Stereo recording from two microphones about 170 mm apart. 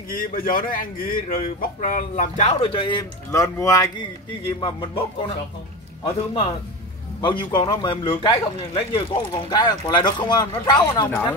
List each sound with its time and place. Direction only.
0.1 s a man's voice: 55° left (ahead or behind)
2.6 s speech: 30° left (ahead or behind)
3.3 s a man's voice: 15° left (ahead or behind)
7.2 s a man's voice: 25° left (ahead or behind)
11.1 s speech: 10° left (ahead or behind)